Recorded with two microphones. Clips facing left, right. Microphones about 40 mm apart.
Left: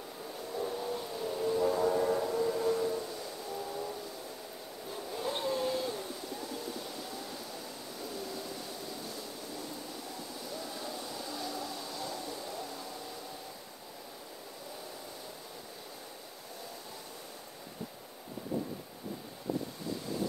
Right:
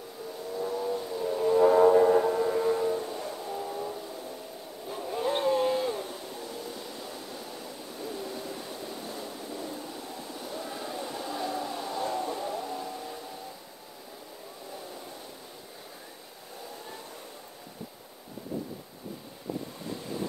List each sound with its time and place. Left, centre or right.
0.8 s vehicle: right
1.4 s train: right
3.4 s vehicle: right
4.8 s a sound: right
8.0 s hoot: right